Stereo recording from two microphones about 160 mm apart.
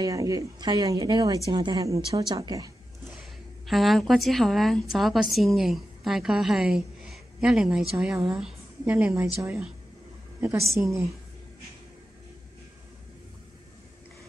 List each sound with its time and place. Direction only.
0.0 s speech: 20° right (ahead or behind)
3.1 s a woman's voice: centre (ahead or behind)
10.8 s a woman's voice: 15° right (ahead or behind)